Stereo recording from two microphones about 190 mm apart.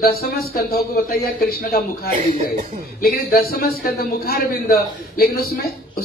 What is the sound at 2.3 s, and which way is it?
Speech, 40° right (ahead or behind).